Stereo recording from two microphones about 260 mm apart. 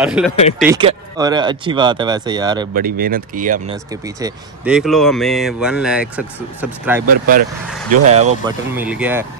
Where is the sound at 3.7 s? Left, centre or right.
Centre.